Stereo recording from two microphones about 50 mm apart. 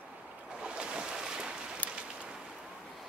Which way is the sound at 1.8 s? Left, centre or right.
Left.